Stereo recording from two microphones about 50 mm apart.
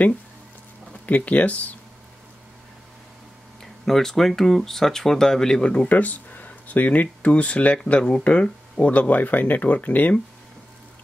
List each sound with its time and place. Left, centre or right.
1.0 s speech: left
3.8 s speech: centre
5.9 s speech: left